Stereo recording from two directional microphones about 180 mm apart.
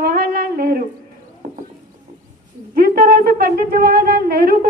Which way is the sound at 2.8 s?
55° right (ahead or behind).